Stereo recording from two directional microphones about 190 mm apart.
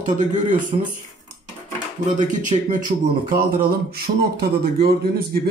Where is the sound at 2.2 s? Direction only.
40° right (ahead or behind).